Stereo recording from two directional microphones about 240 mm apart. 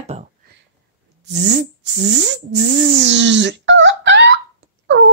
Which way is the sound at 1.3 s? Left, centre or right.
Right.